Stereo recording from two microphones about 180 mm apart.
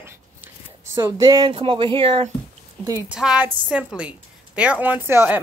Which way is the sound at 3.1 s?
5° right (ahead or behind).